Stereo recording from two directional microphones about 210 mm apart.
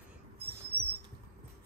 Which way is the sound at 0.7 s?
50° right (ahead or behind).